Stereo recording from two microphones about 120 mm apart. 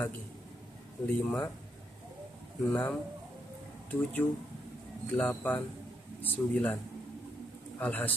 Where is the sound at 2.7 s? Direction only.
15° left (ahead or behind).